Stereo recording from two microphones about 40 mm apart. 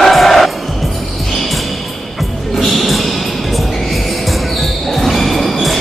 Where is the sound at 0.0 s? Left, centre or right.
Centre.